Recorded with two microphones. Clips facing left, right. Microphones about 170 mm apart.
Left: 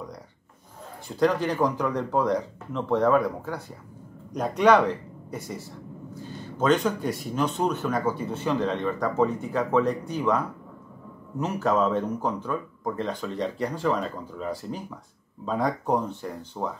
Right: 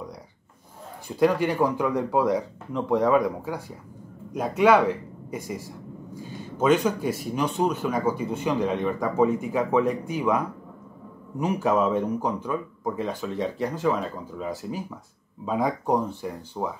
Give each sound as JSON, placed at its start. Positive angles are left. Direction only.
{"t": 1.0, "sound": "a man's voice", "side_deg": -10}